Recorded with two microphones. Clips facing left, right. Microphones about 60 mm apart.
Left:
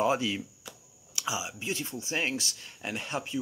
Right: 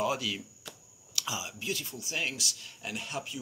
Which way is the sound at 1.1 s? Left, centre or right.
Centre.